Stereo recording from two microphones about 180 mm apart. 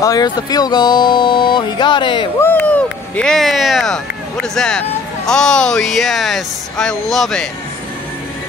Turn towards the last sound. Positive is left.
turn(degrees=0)  # may be behind; listen again after turning